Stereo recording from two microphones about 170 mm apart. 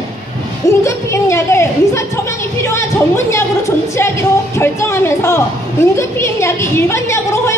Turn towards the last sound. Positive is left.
turn(degrees=15)  # may be behind; listen again after turning